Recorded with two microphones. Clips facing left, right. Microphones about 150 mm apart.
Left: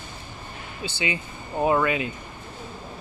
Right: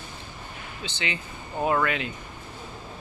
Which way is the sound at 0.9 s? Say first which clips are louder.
Left 4 dB; 10° left (ahead or behind).